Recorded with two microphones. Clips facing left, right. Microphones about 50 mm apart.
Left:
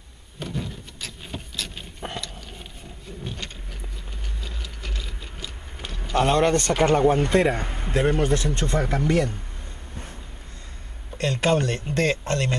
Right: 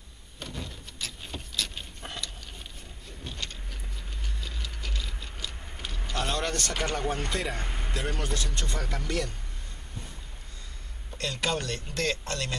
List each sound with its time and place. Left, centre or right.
0.4 s vehicle: centre
4.4 s a sound: centre
6.1 s speech: left
7.1 s speech: centre
7.3 s speech: left
7.6 s a man's voice: centre
7.9 s speech: left
8.7 s speech: left
11.1 s speech: left